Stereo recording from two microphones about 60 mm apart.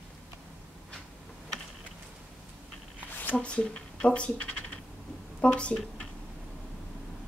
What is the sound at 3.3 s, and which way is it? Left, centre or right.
Speech, centre.